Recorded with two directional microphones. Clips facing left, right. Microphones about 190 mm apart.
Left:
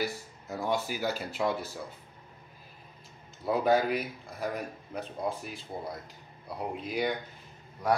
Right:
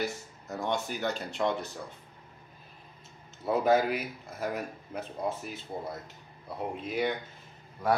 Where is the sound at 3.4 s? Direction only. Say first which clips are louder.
Right 1 dB; centre (ahead or behind).